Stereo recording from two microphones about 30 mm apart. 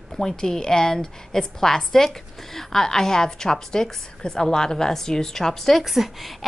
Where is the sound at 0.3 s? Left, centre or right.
Left.